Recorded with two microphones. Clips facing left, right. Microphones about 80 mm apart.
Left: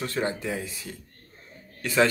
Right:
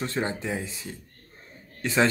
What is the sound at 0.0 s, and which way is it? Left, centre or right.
Speech, right.